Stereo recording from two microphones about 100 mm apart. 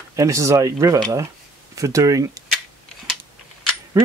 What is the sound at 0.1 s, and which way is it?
Speech, 35° right (ahead or behind).